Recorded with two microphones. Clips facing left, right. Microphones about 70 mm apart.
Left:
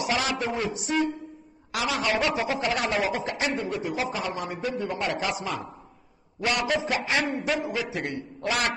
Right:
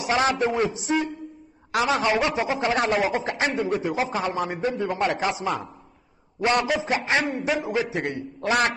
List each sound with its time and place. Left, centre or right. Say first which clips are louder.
0.0 s a man's voice: right 5 dB; right
1.7 s a man's voice: right 5 dB; right